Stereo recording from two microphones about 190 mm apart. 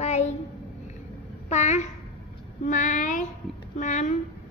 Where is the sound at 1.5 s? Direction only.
35° left (ahead or behind).